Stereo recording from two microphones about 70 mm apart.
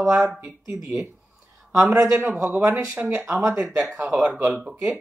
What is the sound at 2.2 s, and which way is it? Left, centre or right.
Speech, right.